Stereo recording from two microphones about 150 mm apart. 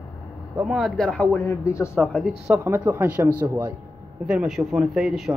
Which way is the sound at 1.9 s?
Centre (ahead or behind).